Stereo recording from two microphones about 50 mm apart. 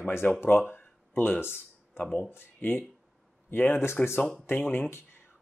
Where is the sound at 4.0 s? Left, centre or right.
Centre.